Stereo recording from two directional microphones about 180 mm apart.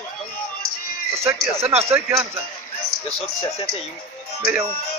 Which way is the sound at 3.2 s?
35° left (ahead or behind).